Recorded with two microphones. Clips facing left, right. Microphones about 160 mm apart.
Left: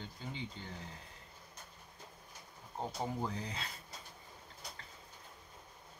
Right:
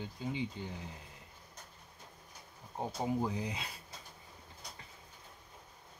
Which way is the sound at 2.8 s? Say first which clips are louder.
Right 4 dB; 10° right (ahead or behind).